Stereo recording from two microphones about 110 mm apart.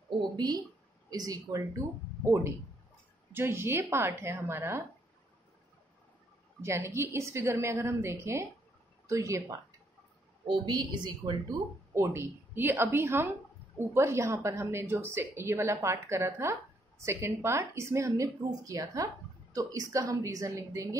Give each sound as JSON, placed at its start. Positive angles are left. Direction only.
{"t": 1.1, "sound": "a woman's voice", "side_deg": -35}
{"t": 3.3, "sound": "a woman's voice", "side_deg": -20}
{"t": 6.6, "sound": "a woman's voice", "side_deg": -25}
{"t": 10.4, "sound": "a woman's voice", "side_deg": -45}
{"t": 11.4, "sound": "a woman's voice", "side_deg": -25}